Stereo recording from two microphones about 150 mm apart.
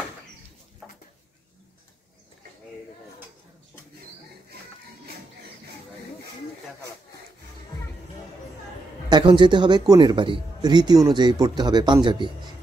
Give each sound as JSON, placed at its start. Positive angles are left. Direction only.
{"t": 9.1, "sound": "speech", "side_deg": -30}